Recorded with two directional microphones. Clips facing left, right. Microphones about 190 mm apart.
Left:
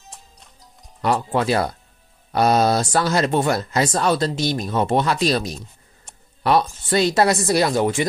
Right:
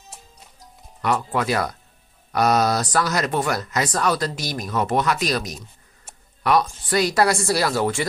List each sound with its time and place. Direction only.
1.0 s speech: 30° left (ahead or behind)